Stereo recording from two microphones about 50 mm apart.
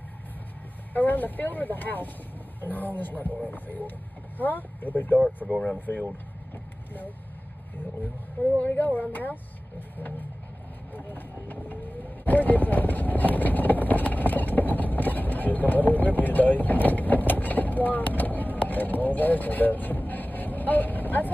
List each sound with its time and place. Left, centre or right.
0.9 s speech: left
5.4 s speech: centre
5.8 s speech: left
8.6 s speech: left
10.9 s vehicle: left